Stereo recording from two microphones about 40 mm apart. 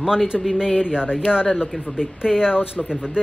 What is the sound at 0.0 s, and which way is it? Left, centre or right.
Speech, centre.